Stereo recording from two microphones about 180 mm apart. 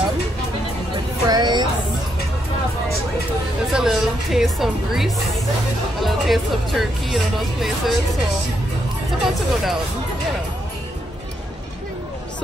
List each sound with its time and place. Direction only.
1.2 s speech: 20° right (ahead or behind)
3.7 s speech: centre (ahead or behind)
9.2 s speech: centre (ahead or behind)